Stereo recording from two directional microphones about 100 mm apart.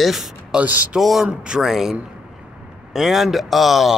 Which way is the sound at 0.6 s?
15° right (ahead or behind).